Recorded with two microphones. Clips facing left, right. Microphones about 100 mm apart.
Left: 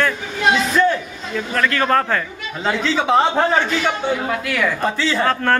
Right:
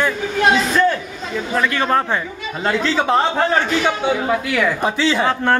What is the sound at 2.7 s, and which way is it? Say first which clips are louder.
Speech: even; centre (ahead or behind).